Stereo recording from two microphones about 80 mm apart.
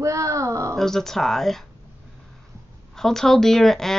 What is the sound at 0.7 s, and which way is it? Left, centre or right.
Speech, centre.